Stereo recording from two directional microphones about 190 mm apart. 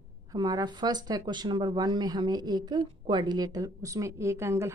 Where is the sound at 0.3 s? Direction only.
20° right (ahead or behind).